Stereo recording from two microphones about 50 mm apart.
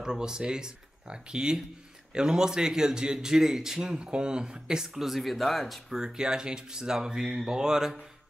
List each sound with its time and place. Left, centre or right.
0.0 s a man's voice: centre
5.9 s a man's voice: centre